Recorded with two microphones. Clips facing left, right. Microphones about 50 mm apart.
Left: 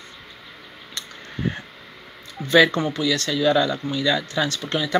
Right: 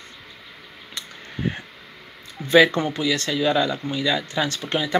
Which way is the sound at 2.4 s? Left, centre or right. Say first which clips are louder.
Right 1 dB; centre.